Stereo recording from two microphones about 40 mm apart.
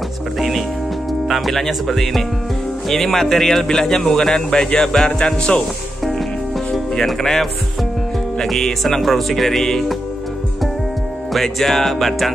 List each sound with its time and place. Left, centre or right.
0.4 s a man's voice: centre
7.1 s a man's voice: centre
8.5 s a man's voice: centre
11.3 s a man's voice: centre